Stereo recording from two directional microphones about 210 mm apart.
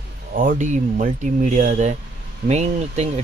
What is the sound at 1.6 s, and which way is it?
Speech, 35° right (ahead or behind).